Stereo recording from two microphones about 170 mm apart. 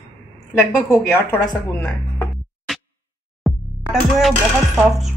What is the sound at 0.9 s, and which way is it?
A woman's voice, 15° left (ahead or behind).